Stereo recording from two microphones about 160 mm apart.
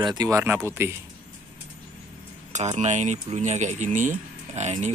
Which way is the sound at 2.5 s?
45° right (ahead or behind).